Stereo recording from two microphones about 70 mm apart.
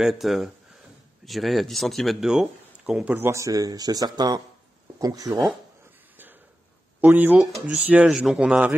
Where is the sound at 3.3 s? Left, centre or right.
Right.